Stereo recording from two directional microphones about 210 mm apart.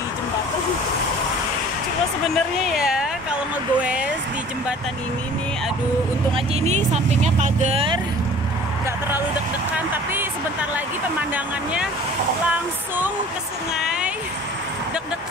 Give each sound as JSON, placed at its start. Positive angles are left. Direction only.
{"t": 2.2, "sound": "speech", "side_deg": 0}
{"t": 6.3, "sound": "speech", "side_deg": -30}
{"t": 11.3, "sound": "speech", "side_deg": -5}